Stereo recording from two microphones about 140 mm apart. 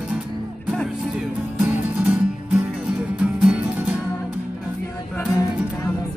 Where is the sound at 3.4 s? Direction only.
10° right (ahead or behind).